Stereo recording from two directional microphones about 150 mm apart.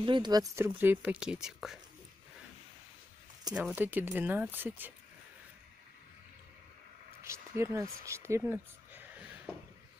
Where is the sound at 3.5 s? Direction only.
5° right (ahead or behind).